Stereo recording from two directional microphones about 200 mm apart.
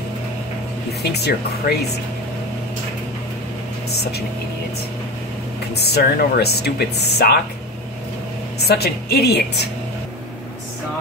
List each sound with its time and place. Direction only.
1.1 s speech: 55° left (ahead or behind)
5.7 s speech: 55° left (ahead or behind)
8.6 s speech: 50° left (ahead or behind)